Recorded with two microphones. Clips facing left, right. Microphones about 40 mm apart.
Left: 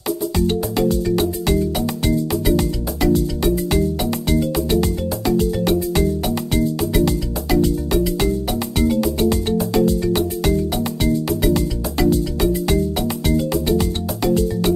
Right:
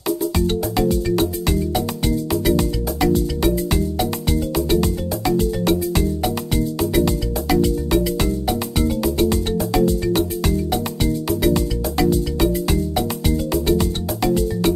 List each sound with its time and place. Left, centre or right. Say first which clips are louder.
2.0 s music: left 1 dB; centre
13.3 s music: left 1 dB; centre
13.7 s music: even; centre